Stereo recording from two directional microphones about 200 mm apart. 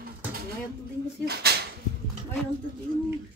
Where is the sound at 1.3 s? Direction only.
55° right (ahead or behind).